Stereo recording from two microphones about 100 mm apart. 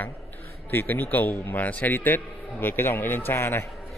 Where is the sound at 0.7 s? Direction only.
20° left (ahead or behind).